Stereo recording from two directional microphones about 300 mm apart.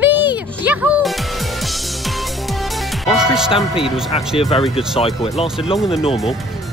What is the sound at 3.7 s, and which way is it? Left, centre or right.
Speech, centre.